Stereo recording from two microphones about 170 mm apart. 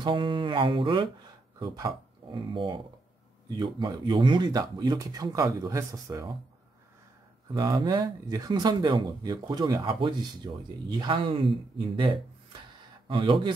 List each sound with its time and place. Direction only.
0.0 s speech: 30° right (ahead or behind)
7.5 s speech: 25° right (ahead or behind)
13.1 s speech: 30° right (ahead or behind)